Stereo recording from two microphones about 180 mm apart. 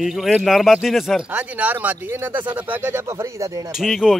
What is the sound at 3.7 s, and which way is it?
Speech, centre (ahead or behind).